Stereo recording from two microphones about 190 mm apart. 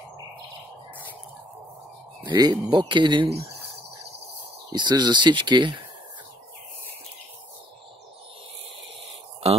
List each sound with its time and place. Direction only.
2.2 s speech: 20° right (ahead or behind)
4.7 s speech: 25° right (ahead or behind)